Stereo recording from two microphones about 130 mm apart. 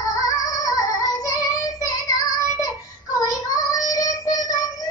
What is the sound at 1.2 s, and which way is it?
Child singing, 25° left (ahead or behind).